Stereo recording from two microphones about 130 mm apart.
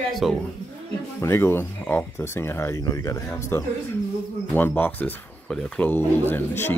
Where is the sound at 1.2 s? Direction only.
20° left (ahead or behind).